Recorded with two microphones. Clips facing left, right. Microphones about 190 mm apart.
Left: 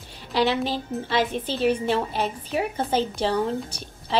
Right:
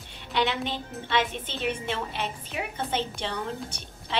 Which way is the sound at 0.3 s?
35° left (ahead or behind).